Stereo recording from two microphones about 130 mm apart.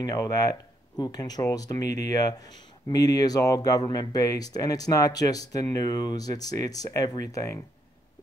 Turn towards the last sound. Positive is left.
turn(degrees=25)  # may be behind; listen again after turning